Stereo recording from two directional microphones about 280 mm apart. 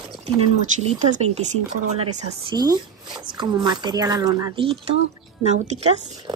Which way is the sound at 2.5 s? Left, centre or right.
Centre.